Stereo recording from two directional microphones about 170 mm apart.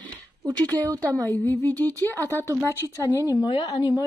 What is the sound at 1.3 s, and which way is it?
Speech, 10° left (ahead or behind).